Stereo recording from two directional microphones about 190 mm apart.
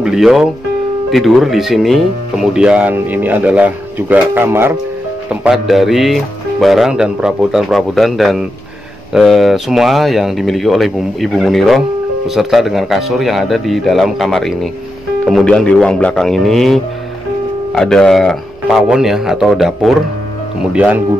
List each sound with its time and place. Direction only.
0.0 s speech: centre (ahead or behind)